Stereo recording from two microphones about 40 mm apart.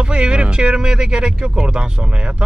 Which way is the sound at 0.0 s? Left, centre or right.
Right.